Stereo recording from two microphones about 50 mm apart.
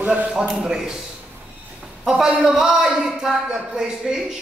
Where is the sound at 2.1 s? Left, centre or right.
Centre.